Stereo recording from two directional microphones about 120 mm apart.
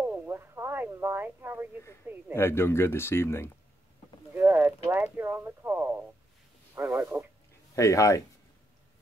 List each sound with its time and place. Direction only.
0.0 s radio: 15° right (ahead or behind)
2.3 s speech: 20° left (ahead or behind)
4.3 s boat: 15° right (ahead or behind)
4.9 s speech: 15° right (ahead or behind)
7.7 s speech: 25° left (ahead or behind)